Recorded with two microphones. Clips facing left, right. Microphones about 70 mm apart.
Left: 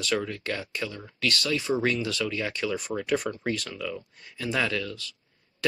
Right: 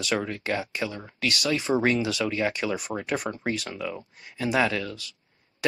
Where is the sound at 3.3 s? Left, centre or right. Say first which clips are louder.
Right 1 dB; right.